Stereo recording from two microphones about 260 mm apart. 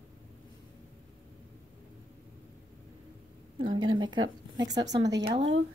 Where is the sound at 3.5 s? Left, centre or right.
Centre.